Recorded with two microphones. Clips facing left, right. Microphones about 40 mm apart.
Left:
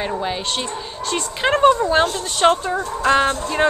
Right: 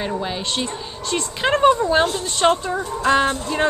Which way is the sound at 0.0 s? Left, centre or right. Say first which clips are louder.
Left 1 dB; centre.